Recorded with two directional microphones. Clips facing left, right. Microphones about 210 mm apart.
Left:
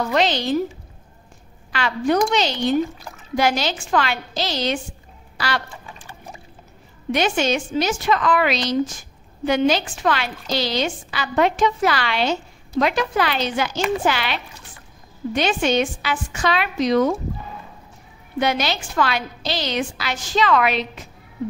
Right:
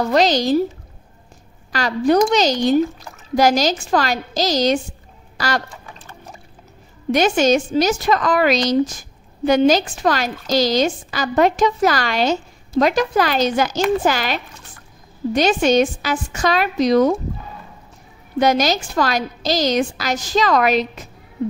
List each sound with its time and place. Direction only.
0.1 s a woman's voice: 40° right (ahead or behind)
1.7 s a woman's voice: 40° right (ahead or behind)
7.1 s a woman's voice: 40° right (ahead or behind)
18.4 s a woman's voice: 40° right (ahead or behind)